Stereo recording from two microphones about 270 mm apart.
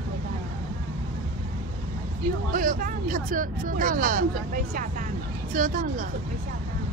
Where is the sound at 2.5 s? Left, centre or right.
Right.